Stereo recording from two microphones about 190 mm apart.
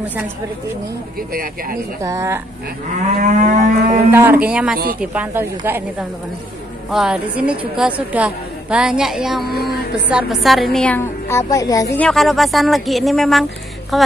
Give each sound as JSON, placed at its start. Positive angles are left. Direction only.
{"t": 0.0, "sound": "speech", "side_deg": -10}
{"t": 1.3, "sound": "speech", "side_deg": -50}
{"t": 2.0, "sound": "speech", "side_deg": -15}
{"t": 3.2, "sound": "moo", "side_deg": -40}
{"t": 4.1, "sound": "a woman's voice", "side_deg": -10}
{"t": 12.0, "sound": "a woman's voice", "side_deg": 0}